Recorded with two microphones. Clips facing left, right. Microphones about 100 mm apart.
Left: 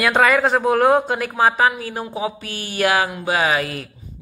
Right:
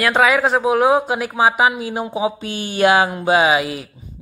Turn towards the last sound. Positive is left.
turn(degrees=-10)  # may be behind; listen again after turning